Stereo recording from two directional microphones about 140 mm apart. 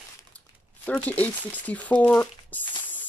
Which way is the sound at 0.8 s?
10° left (ahead or behind).